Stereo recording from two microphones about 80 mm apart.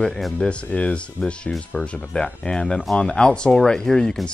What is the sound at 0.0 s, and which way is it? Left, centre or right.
Speech, centre.